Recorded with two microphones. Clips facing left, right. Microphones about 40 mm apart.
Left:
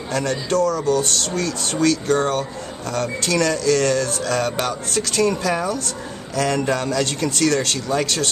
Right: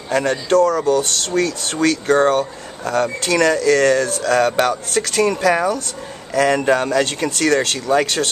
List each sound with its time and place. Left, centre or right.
0.1 s speech: right
4.2 s speech: right